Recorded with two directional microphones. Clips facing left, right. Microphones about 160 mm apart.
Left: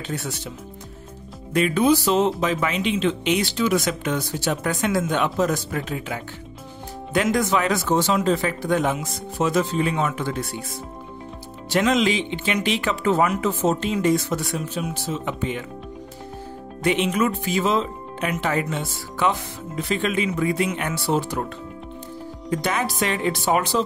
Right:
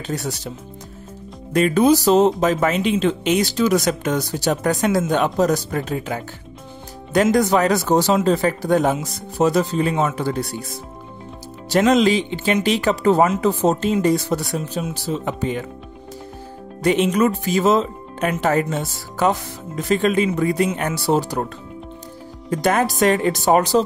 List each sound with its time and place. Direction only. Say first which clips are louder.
0.0 s speech: right 4 dB; 40° right (ahead or behind)
1.5 s speech: right 3 dB; 40° right (ahead or behind)
7.3 s speech: right 5 dB; 40° right (ahead or behind)
11.7 s speech: right 5 dB; 40° right (ahead or behind)
16.8 s speech: right 4 dB; 40° right (ahead or behind)
22.5 s speech: right 6 dB; 45° right (ahead or behind)